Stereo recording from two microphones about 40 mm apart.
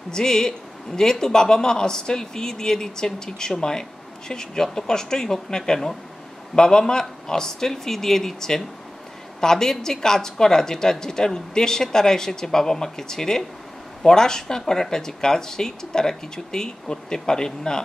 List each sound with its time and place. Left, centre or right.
0.1 s a woman's voice: centre